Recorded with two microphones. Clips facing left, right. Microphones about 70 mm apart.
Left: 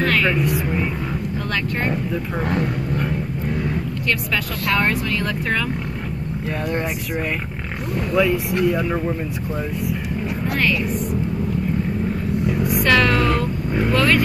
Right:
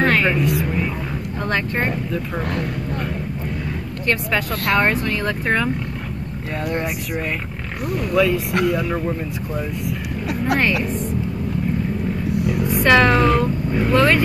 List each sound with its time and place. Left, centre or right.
0.0 s a sound: right
0.4 s speech: centre
4.6 s speech: centre
5.2 s speech: right
8.1 s speech: centre
12.3 s vehicle: right
12.7 s music: right
13.9 s speech: right